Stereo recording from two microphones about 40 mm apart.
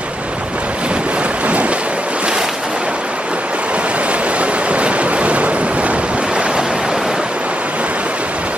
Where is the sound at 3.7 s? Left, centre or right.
Right.